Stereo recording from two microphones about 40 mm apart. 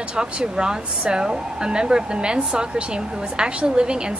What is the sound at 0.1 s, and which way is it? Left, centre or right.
A woman's voice, right.